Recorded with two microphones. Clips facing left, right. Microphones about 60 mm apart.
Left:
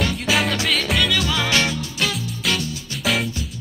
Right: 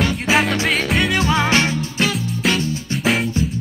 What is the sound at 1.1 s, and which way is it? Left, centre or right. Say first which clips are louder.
Music: right 4 dB; right.